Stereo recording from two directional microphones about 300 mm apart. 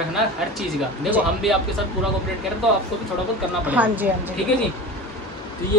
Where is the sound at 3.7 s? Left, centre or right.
Centre.